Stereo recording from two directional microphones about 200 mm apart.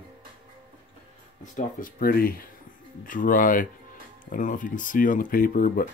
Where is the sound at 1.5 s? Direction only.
45° left (ahead or behind).